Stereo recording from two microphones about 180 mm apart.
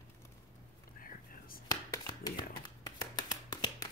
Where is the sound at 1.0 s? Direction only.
50° left (ahead or behind).